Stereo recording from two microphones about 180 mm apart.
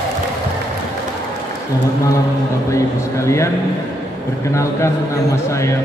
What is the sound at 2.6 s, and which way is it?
A man's voice, 15° left (ahead or behind).